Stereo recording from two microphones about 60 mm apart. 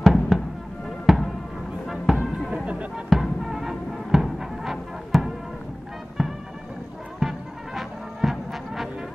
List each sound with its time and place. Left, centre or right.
0.0 s fireworks: centre
1.0 s music: centre
2.5 s music: centre
3.1 s music: centre